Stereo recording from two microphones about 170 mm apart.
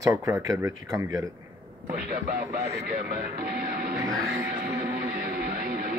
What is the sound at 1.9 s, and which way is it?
Speech, 50° right (ahead or behind).